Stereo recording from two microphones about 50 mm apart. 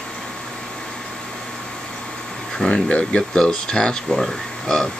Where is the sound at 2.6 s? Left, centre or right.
Left; by 4.9 s centre.